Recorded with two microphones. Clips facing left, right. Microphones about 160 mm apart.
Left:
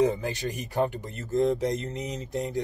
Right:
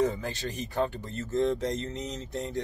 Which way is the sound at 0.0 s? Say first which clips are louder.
Left 3 dB; 15° left (ahead or behind).